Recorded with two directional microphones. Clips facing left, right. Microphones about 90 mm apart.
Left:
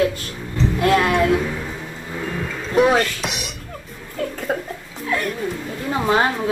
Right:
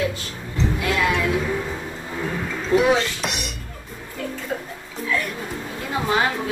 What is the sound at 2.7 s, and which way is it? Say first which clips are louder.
Dishes: left 2 dB; 25° right (ahead or behind).